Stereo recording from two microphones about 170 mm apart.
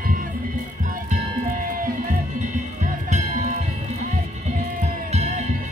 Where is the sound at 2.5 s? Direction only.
45° right (ahead or behind).